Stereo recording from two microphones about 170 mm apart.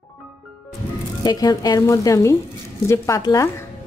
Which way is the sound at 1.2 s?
25° left (ahead or behind).